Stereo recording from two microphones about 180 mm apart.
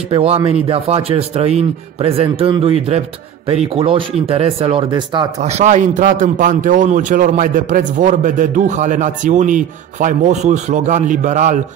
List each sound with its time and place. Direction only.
0.1 s a man's voice: 30° right (ahead or behind)
5.4 s a man's voice: 40° right (ahead or behind)